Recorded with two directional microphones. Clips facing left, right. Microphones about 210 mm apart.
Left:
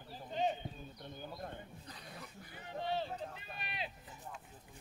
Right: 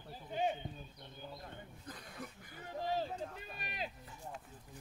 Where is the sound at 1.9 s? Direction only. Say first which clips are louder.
Right 7 dB; 45° right (ahead or behind).